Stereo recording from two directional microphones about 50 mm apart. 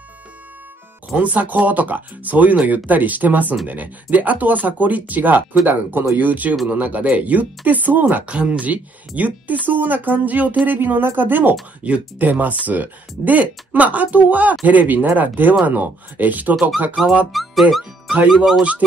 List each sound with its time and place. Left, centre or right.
1.1 s speech: right
8.3 s speech: right
17.3 s speech: centre